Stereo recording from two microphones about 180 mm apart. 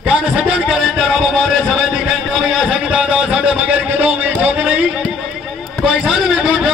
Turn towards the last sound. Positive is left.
turn(degrees=-5)  # may be behind; listen again after turning